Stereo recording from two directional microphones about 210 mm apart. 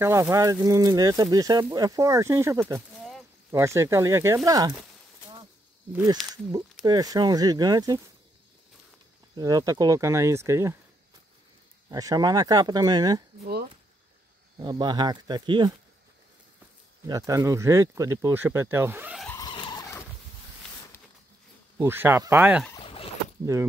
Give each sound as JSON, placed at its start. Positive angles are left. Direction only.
{"t": 0.0, "sound": "speech", "side_deg": -15}
{"t": 3.0, "sound": "a sound", "side_deg": 0}
{"t": 3.5, "sound": "speech", "side_deg": -15}
{"t": 6.3, "sound": "speech", "side_deg": -20}
{"t": 9.3, "sound": "speech", "side_deg": -20}
{"t": 11.9, "sound": "speech", "side_deg": -15}
{"t": 14.6, "sound": "speech", "side_deg": -20}
{"t": 17.0, "sound": "speech", "side_deg": -15}
{"t": 19.2, "sound": "vehicle", "side_deg": 15}
{"t": 21.7, "sound": "speech", "side_deg": -10}
{"t": 22.8, "sound": "boat", "side_deg": 25}
{"t": 23.4, "sound": "speech", "side_deg": -15}